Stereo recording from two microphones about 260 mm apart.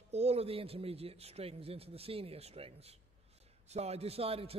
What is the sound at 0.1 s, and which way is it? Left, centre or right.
A man's voice, right.